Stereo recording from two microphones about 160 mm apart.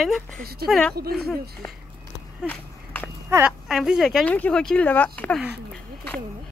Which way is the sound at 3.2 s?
15° right (ahead or behind).